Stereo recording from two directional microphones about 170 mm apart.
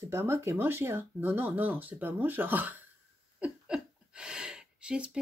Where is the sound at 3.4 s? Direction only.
5° right (ahead or behind).